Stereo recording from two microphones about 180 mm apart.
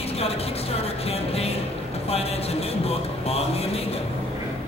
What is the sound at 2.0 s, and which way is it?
Speech, 35° left (ahead or behind).